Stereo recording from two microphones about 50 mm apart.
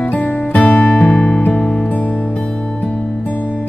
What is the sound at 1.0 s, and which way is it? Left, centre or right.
Music, centre.